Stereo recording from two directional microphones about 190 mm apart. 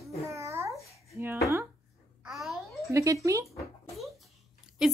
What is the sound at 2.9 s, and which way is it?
Speech, 15° right (ahead or behind).